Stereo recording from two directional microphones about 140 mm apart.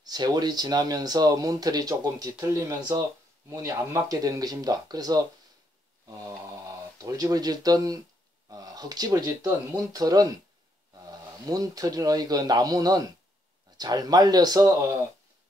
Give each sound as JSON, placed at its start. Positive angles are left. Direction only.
{"t": 0.0, "sound": "speech", "side_deg": -30}